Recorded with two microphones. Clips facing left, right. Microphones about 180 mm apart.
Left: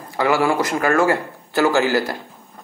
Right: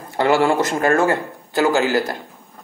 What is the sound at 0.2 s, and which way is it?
A man's voice, 25° right (ahead or behind).